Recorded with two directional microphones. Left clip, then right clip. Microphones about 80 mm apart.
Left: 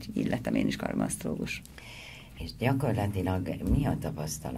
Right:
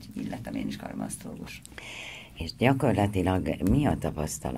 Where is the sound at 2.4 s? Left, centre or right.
Right.